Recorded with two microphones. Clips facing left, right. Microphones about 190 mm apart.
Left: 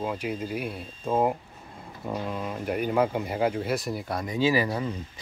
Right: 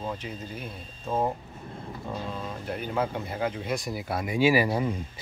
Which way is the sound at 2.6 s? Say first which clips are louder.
Left 5 dB; 10° left (ahead or behind).